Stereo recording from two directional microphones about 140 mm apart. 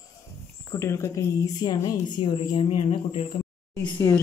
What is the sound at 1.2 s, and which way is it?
Speech, 20° left (ahead or behind).